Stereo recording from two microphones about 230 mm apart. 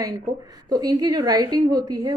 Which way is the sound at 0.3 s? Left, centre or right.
Centre.